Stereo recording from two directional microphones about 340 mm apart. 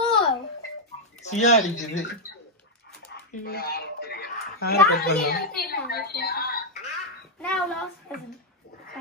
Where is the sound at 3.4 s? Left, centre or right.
Left.